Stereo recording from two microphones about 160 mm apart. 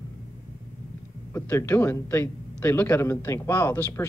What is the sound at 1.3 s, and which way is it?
A man's voice, 15° left (ahead or behind).